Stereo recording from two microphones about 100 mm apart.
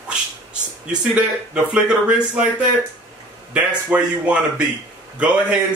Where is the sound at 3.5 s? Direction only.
10° right (ahead or behind).